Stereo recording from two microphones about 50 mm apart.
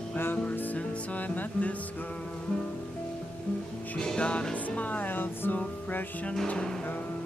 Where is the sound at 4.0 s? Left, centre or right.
Centre; by 5.5 s left.